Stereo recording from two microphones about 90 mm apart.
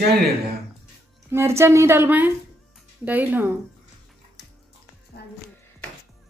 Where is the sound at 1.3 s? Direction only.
30° right (ahead or behind).